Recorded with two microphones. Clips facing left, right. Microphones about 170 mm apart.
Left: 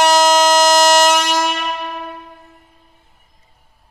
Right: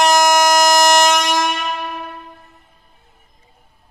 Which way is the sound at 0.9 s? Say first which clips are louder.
Left 1 dB; 5° left (ahead or behind).